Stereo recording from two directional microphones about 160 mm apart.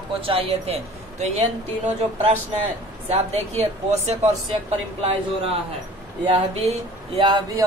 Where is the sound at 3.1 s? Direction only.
40° right (ahead or behind).